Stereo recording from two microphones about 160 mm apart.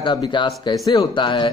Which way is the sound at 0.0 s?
30° left (ahead or behind).